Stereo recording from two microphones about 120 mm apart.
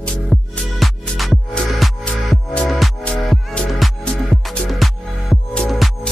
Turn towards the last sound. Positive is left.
turn(degrees=0)  # may be behind; listen again after turning